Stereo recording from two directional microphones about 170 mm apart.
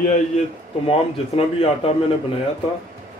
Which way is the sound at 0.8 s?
35° left (ahead or behind).